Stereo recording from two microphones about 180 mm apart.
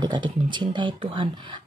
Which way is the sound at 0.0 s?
25° right (ahead or behind).